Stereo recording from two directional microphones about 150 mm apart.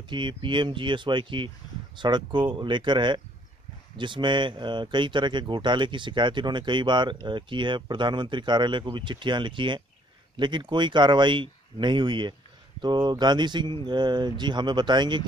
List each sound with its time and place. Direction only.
0.1 s speech: 30° right (ahead or behind)